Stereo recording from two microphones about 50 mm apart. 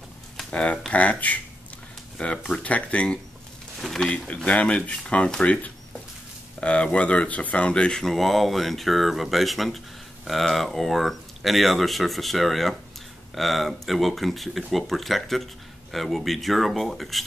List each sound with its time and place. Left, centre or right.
0.5 s speech: left
3.8 s speech: centre
4.5 s speech: left
8.1 s speech: centre